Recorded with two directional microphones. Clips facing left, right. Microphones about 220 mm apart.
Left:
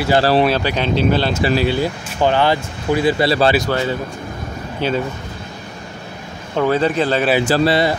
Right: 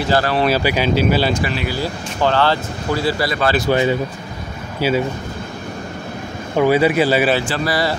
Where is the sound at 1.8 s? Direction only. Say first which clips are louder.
Left 2 dB; 15° left (ahead or behind).